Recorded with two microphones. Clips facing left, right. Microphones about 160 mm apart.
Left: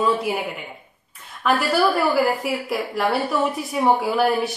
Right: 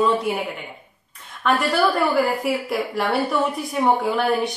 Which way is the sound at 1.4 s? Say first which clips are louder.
Even; 5° left (ahead or behind).